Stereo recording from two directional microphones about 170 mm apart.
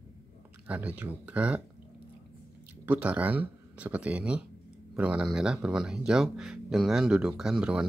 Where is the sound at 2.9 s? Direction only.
10° right (ahead or behind).